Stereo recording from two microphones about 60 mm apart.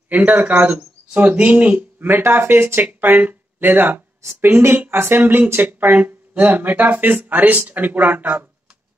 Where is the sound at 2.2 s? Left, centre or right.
Right.